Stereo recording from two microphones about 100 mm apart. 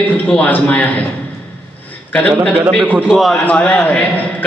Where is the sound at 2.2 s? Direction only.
10° left (ahead or behind).